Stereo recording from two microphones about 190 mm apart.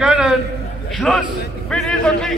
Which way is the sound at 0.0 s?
5° right (ahead or behind).